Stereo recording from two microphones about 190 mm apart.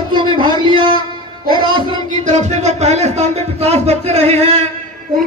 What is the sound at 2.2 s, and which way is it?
Speech, 40° right (ahead or behind).